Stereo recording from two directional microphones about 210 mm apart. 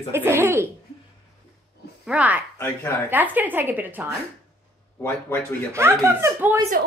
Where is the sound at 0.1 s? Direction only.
10° right (ahead or behind).